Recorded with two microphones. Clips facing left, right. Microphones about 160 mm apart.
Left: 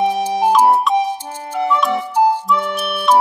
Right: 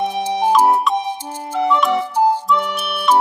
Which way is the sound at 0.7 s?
Centre (ahead or behind).